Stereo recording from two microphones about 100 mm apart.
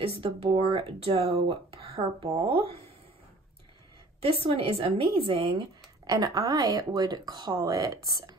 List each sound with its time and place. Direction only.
0.0 s speech: 70° right (ahead or behind)
4.2 s speech: 75° right (ahead or behind)
6.0 s a woman's voice: 35° right (ahead or behind)